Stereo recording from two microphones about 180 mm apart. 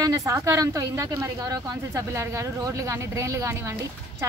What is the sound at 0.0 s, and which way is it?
A woman's voice, 20° right (ahead or behind).